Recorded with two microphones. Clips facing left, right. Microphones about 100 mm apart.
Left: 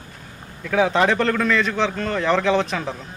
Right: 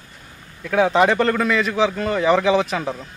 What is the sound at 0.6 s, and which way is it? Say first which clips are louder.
A man's voice: right 2 dB; centre (ahead or behind).